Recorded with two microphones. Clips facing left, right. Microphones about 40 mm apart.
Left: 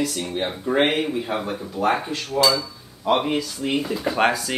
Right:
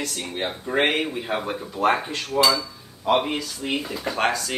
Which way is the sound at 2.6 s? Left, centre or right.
Centre.